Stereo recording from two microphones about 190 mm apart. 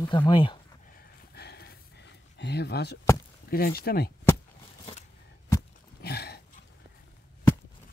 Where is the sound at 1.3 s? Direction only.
60° left (ahead or behind).